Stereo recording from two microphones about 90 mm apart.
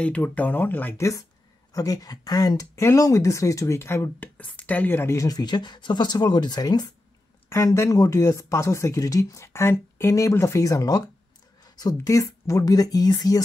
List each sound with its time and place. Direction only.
0.0 s speech: 15° left (ahead or behind)
0.9 s speech: 35° left (ahead or behind)
4.2 s speech: 15° left (ahead or behind); by 5.4 s 35° left (ahead or behind)
5.4 s speech: 55° left (ahead or behind)
7.4 s a woman's voice: 30° left (ahead or behind)